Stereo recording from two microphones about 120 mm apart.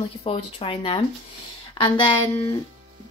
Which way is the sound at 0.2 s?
55° left (ahead or behind).